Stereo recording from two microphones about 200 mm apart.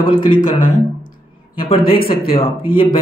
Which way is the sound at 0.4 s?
40° left (ahead or behind).